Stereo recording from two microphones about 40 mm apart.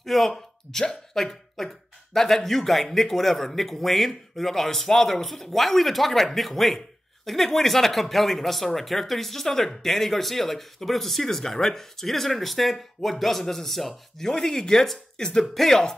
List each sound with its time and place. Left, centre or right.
0.0 s speech: centre